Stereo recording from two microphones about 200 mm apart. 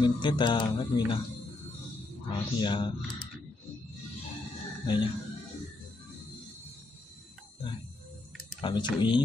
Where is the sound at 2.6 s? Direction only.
25° left (ahead or behind).